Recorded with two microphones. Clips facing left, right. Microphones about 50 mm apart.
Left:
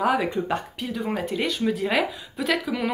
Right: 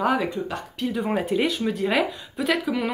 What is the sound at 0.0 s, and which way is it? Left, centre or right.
Speech, centre.